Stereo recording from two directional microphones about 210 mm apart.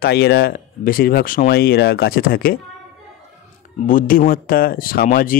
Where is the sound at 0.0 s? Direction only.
50° left (ahead or behind).